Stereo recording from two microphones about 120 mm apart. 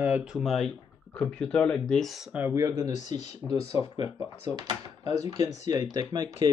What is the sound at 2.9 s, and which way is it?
Speech, 75° left (ahead or behind).